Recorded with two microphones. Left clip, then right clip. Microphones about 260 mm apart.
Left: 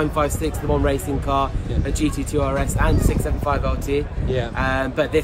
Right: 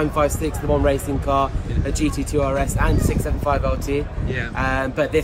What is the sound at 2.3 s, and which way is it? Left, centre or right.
Speech, centre.